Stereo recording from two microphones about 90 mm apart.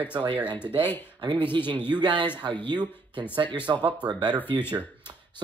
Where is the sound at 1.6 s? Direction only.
65° right (ahead or behind).